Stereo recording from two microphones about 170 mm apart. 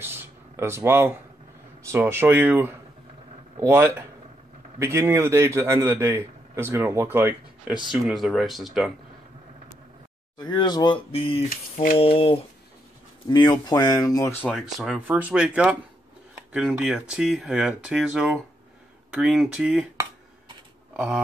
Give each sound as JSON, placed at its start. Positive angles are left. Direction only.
{"t": 0.0, "sound": "a sound", "side_deg": -15}
{"t": 1.9, "sound": "a man's voice", "side_deg": -15}
{"t": 7.8, "sound": "speech", "side_deg": 0}
{"t": 10.4, "sound": "speech", "side_deg": 25}
{"t": 14.5, "sound": "a man's voice", "side_deg": 0}
{"t": 20.9, "sound": "speech", "side_deg": -5}